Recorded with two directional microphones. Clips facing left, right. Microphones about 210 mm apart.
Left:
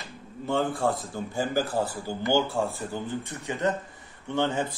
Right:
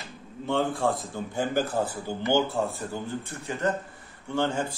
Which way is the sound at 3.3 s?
15° left (ahead or behind).